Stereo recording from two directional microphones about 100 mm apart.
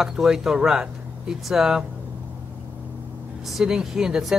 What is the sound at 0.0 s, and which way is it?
Speech, 5° right (ahead or behind).